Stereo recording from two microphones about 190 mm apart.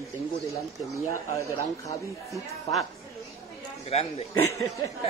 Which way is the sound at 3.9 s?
35° left (ahead or behind).